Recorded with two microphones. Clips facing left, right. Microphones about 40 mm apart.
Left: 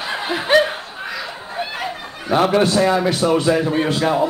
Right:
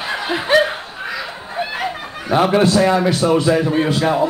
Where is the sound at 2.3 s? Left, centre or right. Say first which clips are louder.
Right 1 dB; centre.